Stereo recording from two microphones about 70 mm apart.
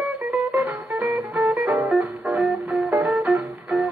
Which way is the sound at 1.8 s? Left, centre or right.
Centre.